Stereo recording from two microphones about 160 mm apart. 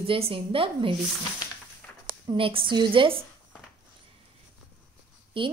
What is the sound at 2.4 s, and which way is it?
Speech, 35° right (ahead or behind).